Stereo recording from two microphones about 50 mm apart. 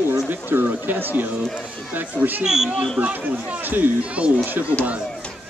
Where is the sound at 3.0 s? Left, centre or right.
Right.